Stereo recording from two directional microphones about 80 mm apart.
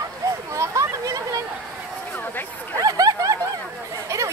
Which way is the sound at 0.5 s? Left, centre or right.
Right.